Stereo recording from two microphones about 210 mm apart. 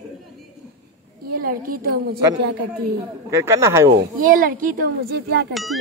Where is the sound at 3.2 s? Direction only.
15° right (ahead or behind).